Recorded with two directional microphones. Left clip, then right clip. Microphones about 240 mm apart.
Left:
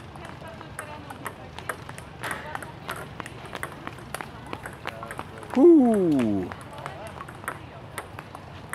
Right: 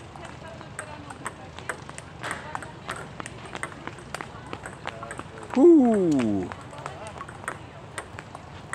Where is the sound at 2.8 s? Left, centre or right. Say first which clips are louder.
Even; left.